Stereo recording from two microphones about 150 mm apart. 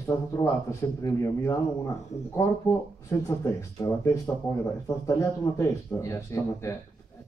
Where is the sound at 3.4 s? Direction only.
20° left (ahead or behind).